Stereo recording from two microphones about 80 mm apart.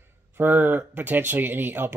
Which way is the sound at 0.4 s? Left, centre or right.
Right.